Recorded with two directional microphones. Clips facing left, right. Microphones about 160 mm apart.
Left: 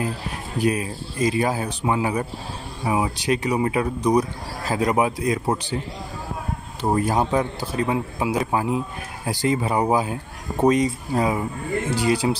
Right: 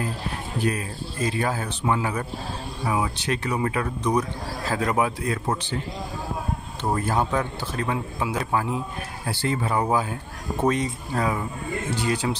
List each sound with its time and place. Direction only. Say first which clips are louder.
0.6 s a man's voice: left 5 dB; 10° left (ahead or behind)
6.9 s a man's voice: left 3 dB; 15° left (ahead or behind)